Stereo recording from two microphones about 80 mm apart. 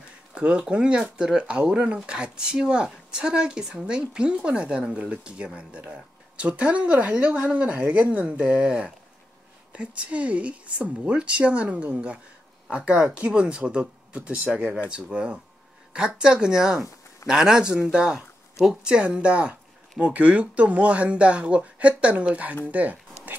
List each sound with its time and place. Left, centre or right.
0.3 s speech: centre